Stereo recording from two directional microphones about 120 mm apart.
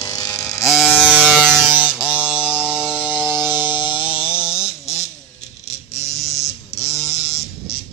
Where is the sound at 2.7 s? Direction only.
10° right (ahead or behind).